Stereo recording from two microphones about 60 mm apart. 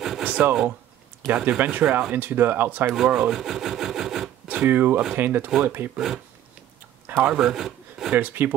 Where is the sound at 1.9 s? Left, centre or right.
Centre.